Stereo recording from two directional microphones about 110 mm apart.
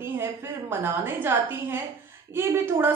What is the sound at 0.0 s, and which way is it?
A woman's voice, 20° right (ahead or behind).